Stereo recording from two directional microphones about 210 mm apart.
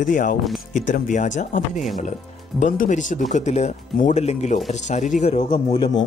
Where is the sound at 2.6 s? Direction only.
35° left (ahead or behind).